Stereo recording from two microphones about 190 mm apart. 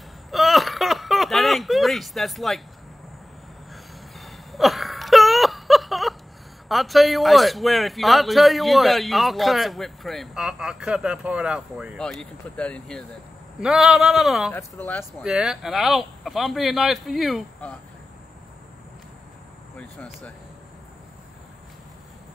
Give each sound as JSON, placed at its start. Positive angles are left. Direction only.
{"t": 0.3, "sound": "a sound", "side_deg": 0}
{"t": 3.7, "sound": "wheeze", "side_deg": 0}
{"t": 6.7, "sound": "speech", "side_deg": 0}
{"t": 15.2, "sound": "speech", "side_deg": -5}
{"t": 19.8, "sound": "speech", "side_deg": 5}